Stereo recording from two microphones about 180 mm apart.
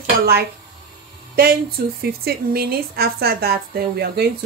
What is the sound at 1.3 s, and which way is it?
A woman's voice, 60° right (ahead or behind).